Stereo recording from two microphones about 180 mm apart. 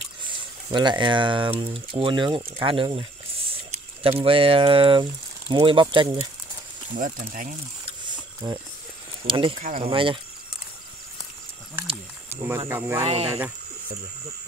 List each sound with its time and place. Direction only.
0.7 s speech: 25° right (ahead or behind)
7.0 s speech: 50° right (ahead or behind)
8.4 s speech: 25° right (ahead or behind)
9.6 s speech: 45° right (ahead or behind)
9.8 s speech: 30° right (ahead or behind)
12.4 s speech: 15° right (ahead or behind)
13.0 s speech: 35° right (ahead or behind)